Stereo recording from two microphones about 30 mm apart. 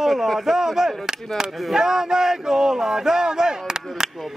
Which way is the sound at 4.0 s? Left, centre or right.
Centre.